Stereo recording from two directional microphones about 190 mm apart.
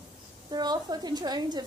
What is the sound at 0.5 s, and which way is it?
Speech, 20° right (ahead or behind).